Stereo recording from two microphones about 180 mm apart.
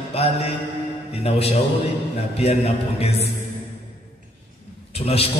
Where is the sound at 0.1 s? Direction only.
35° left (ahead or behind).